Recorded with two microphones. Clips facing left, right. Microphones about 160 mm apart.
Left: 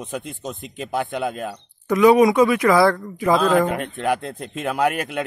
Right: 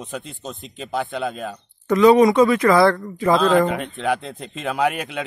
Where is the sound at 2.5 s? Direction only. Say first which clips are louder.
Right 1 dB; 15° left (ahead or behind).